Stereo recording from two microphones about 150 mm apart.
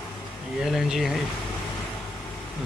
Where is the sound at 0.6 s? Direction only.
5° right (ahead or behind).